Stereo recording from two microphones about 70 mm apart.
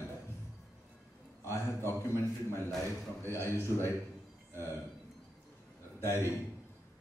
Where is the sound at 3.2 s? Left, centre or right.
Left.